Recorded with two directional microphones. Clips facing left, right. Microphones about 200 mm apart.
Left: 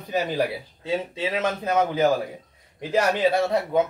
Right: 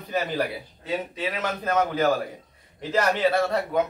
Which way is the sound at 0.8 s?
25° left (ahead or behind).